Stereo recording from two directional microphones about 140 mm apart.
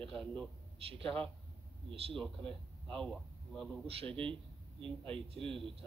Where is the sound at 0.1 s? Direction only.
5° left (ahead or behind).